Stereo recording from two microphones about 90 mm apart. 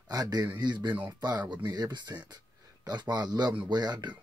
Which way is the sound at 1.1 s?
45° right (ahead or behind).